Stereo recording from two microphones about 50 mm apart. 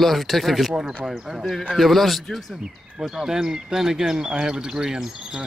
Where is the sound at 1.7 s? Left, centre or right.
Centre.